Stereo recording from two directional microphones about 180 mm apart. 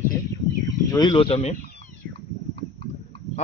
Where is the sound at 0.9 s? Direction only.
25° left (ahead or behind).